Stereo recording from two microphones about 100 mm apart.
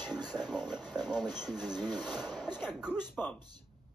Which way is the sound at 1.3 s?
5° right (ahead or behind).